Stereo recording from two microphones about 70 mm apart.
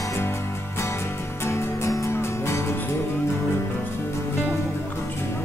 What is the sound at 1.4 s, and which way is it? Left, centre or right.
Music, left.